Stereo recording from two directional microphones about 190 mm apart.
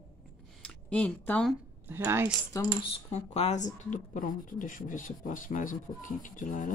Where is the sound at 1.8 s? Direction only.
10° right (ahead or behind).